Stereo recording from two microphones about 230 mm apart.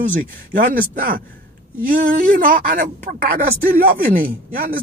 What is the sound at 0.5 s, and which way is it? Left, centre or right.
Speech, right.